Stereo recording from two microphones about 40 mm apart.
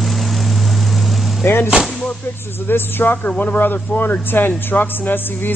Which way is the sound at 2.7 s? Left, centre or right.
Left.